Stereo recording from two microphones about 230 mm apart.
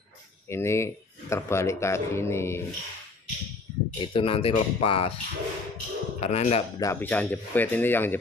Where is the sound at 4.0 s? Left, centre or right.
Left.